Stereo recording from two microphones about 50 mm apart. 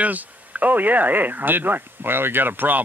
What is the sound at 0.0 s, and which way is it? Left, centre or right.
Speech, right.